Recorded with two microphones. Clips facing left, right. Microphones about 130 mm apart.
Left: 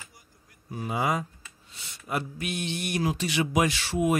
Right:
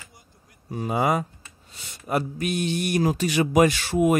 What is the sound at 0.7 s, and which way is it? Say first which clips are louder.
Speech: right 5 dB; 40° right (ahead or behind).